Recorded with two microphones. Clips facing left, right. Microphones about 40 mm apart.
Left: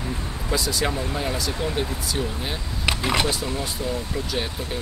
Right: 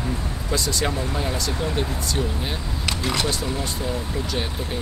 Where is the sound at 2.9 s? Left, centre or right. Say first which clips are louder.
Left 3 dB; centre.